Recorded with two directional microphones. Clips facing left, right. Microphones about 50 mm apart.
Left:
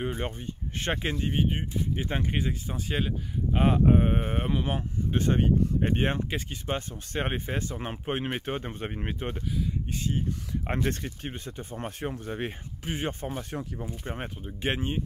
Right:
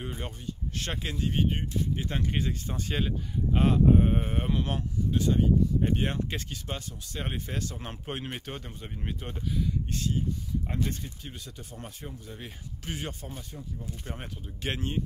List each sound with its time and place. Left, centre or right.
0.7 s speech: left
1.1 s speech: centre
3.7 s speech: left
5.1 s speech: left
5.4 s speech: left
8.7 s speech: left
9.8 s speech: centre
10.7 s speech: left
11.3 s speech: left
12.0 s speech: left
12.8 s speech: left
13.4 s speech: left
13.8 s speech: left